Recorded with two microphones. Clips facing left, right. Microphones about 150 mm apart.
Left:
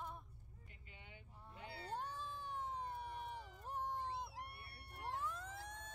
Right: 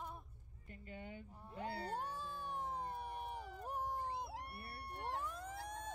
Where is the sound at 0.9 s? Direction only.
45° right (ahead or behind).